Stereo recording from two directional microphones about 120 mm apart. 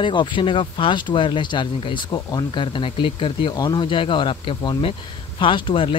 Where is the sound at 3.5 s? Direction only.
35° left (ahead or behind).